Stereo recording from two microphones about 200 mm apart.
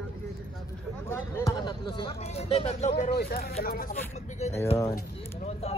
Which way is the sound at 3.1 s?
50° left (ahead or behind).